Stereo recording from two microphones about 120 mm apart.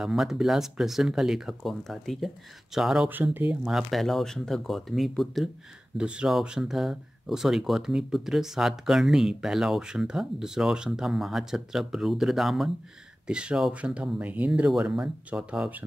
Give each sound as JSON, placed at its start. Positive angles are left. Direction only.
{"t": 0.0, "sound": "speech", "side_deg": -5}
{"t": 3.1, "sound": "speech", "side_deg": -15}
{"t": 3.6, "sound": "speech", "side_deg": 0}